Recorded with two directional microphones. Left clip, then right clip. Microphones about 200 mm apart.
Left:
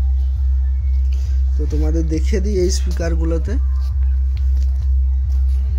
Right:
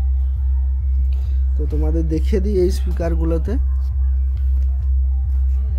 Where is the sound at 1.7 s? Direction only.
5° right (ahead or behind).